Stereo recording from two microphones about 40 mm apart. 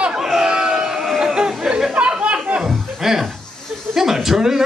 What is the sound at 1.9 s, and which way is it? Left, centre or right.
Chatter, right.